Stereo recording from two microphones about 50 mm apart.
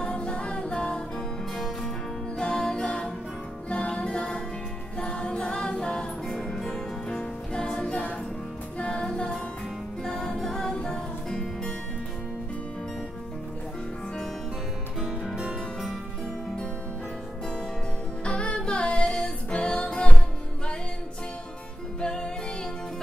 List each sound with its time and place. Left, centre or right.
0.0 s music: centre
2.3 s music: centre
15.0 s music: centre
18.2 s music: left
22.0 s music: centre